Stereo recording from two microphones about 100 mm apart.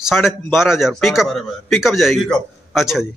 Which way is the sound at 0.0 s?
Centre (ahead or behind).